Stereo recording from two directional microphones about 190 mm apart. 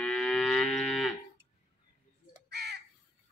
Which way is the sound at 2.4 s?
60° right (ahead or behind).